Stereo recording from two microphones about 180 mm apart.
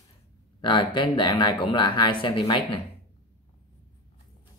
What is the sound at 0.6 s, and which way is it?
Speech, 25° left (ahead or behind).